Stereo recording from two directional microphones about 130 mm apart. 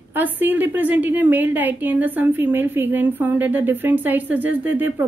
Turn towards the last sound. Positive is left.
turn(degrees=-15)  # may be behind; listen again after turning